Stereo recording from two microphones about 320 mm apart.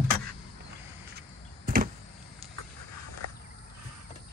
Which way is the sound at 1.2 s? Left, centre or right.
Right.